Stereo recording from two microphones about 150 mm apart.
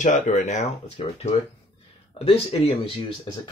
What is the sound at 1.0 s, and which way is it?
Speech, 45° left (ahead or behind).